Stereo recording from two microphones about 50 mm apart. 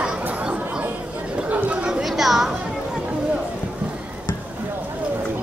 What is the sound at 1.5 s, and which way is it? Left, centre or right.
Chatter, right.